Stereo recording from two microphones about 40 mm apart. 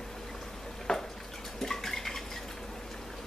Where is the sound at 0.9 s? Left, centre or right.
Left.